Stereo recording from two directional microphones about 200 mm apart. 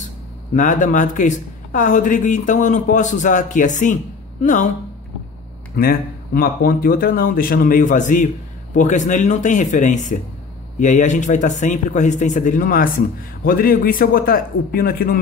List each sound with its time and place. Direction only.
0.6 s speech: 40° left (ahead or behind)
5.8 s speech: 45° left (ahead or behind)